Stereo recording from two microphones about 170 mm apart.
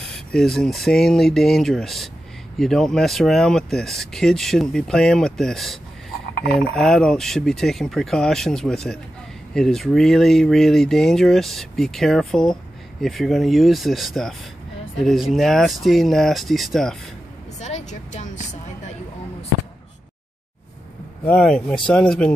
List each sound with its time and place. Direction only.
0.1 s speech: 5° left (ahead or behind)
17.6 s vehicle: 40° left (ahead or behind)
21.2 s speech: 5° left (ahead or behind)